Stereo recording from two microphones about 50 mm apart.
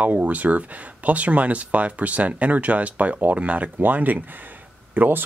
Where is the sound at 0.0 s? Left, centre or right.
Right.